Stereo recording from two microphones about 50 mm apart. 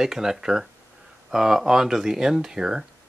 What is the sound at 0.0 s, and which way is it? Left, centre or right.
Speech, centre.